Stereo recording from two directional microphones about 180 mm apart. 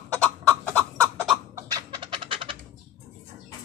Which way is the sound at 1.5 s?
25° right (ahead or behind).